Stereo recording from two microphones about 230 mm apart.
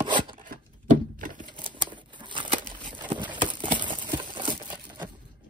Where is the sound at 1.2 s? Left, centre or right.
Right.